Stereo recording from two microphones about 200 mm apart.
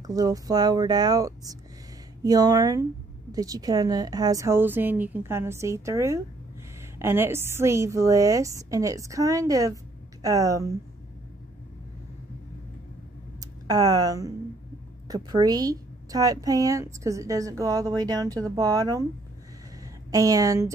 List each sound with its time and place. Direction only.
0.0 s speech: 20° right (ahead or behind)
13.4 s a woman's voice: 20° right (ahead or behind)